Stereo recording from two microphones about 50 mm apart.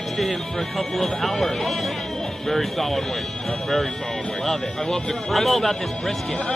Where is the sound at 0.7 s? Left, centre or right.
Centre.